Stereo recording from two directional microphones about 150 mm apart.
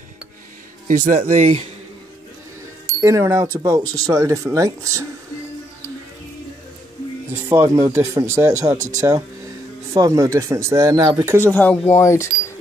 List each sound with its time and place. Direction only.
0.8 s speech: 55° right (ahead or behind)
3.0 s speech: 20° right (ahead or behind)
7.4 s speech: 20° right (ahead or behind)
11.4 s speech: 10° left (ahead or behind)